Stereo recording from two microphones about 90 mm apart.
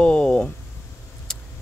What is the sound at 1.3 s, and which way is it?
Vehicle, 5° left (ahead or behind).